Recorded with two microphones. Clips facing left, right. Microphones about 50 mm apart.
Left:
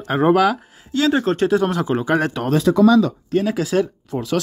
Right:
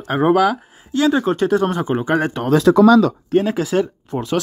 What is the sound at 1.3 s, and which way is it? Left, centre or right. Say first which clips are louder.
Speech: right 1 dB; left.